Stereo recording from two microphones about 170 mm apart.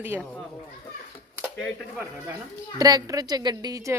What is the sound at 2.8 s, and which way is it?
A woman's voice, 20° right (ahead or behind).